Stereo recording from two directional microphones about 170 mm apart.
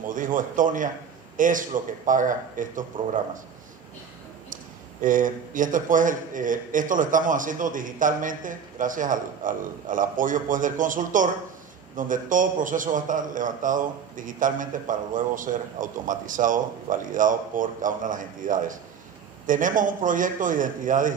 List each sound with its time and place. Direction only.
0.0 s a man's voice: 50° right (ahead or behind)
5.0 s a man's voice: 50° right (ahead or behind)